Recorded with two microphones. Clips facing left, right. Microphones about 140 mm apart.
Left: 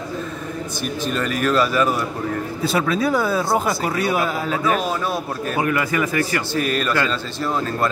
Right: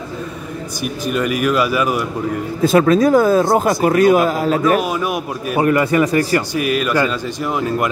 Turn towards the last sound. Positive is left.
turn(degrees=-15)  # may be behind; listen again after turning